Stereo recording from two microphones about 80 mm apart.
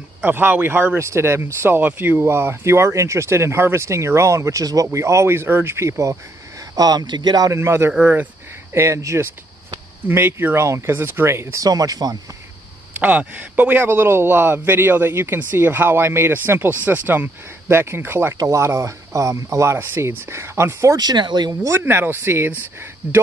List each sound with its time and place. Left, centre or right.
0.2 s a man's voice: right
6.6 s speech: right
7.5 s speech: right
8.0 s a man's voice: right
8.7 s speech: right
10.0 s a man's voice: right
11.6 s speech: right
13.0 s a man's voice: centre
17.6 s a man's voice: right
18.4 s speech: right
20.9 s speech: right
21.6 s a man's voice: right